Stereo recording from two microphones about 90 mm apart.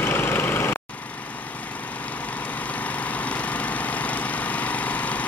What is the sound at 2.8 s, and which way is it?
Lawn mower, 15° left (ahead or behind).